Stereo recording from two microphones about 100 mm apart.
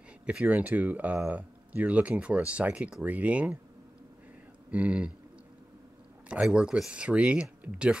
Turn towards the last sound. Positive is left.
turn(degrees=-10)  # may be behind; listen again after turning